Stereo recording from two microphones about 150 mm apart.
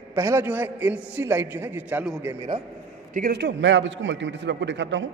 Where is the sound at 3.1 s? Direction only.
75° right (ahead or behind).